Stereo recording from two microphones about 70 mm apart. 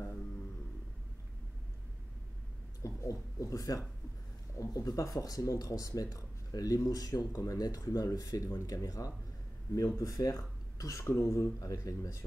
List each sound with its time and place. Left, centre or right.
2.8 s speech: left